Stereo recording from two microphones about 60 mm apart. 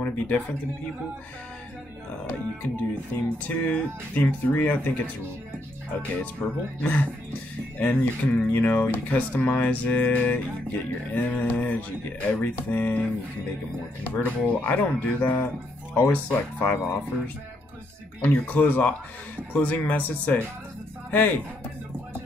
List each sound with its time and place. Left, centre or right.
2.2 s speech: left
6.4 s speech: left
14.1 s speech: left
18.2 s speech: left